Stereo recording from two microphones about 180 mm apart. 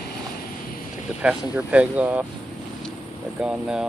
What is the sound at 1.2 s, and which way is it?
Speech, 5° right (ahead or behind).